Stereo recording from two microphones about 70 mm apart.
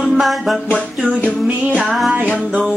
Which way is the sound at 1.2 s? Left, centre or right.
Centre.